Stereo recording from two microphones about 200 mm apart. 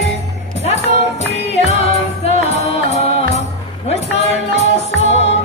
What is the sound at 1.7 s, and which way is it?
Music, 30° left (ahead or behind).